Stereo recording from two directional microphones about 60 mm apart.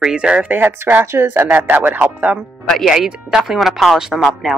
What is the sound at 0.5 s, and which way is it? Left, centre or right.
Speech, right.